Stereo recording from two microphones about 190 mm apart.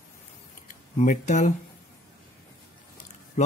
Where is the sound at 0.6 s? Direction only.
40° left (ahead or behind).